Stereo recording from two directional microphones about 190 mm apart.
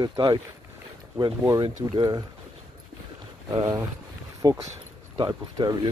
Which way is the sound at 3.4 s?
20° right (ahead or behind).